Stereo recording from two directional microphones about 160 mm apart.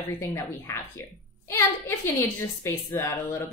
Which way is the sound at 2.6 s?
15° left (ahead or behind).